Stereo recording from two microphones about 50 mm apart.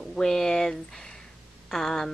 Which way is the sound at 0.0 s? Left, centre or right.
Centre.